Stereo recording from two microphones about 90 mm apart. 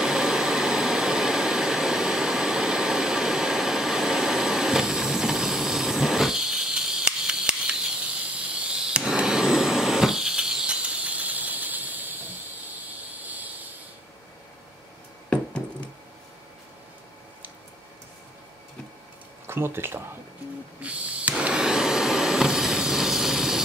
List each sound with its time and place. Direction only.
0.0 s vehicle: 5° right (ahead or behind)
8.4 s vacuum cleaner: 15° right (ahead or behind)
13.1 s vehicle: 15° right (ahead or behind)
19.4 s speech: 25° right (ahead or behind)
20.8 s a sound: 15° right (ahead or behind)